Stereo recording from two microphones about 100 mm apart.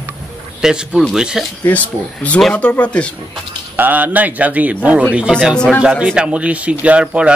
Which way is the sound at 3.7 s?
20° right (ahead or behind).